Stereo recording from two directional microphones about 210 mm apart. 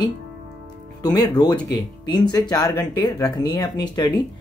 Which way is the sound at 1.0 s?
20° left (ahead or behind).